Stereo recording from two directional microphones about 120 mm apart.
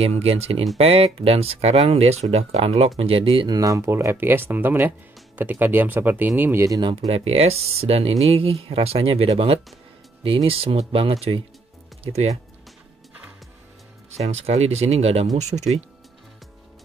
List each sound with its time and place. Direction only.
0.0 s speech: 55° right (ahead or behind)
3.4 s speech: 30° right (ahead or behind)
7.0 s speech: 55° right (ahead or behind)
14.1 s speech: 60° right (ahead or behind)